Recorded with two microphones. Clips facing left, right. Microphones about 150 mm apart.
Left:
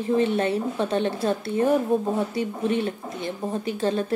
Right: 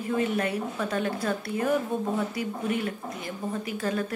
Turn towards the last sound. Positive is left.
turn(degrees=30)  # may be behind; listen again after turning